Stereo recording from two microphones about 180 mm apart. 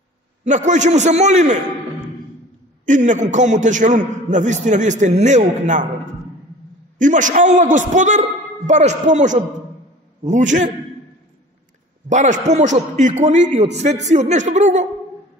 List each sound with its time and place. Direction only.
0.4 s a man's voice: 45° right (ahead or behind)
2.8 s a man's voice: 45° right (ahead or behind)
7.0 s a man's voice: 45° right (ahead or behind)
12.1 s a man's voice: 45° right (ahead or behind)